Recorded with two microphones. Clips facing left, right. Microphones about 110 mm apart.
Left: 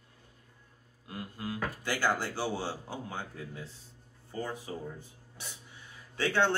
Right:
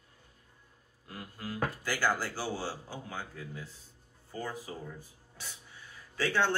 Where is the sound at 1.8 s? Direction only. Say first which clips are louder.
Left 2 dB; 25° left (ahead or behind).